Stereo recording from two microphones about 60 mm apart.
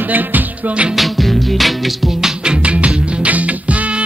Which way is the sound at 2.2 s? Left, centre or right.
Centre.